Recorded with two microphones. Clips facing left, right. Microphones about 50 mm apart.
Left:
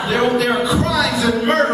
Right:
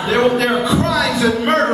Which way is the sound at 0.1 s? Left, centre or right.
Right.